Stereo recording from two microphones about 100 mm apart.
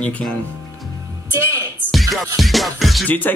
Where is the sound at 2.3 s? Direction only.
Centre (ahead or behind).